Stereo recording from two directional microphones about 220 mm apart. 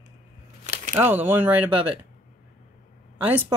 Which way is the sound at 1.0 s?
10° right (ahead or behind).